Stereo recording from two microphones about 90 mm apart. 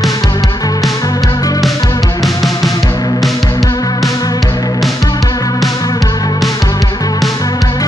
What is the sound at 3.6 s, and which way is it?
Music, 45° left (ahead or behind).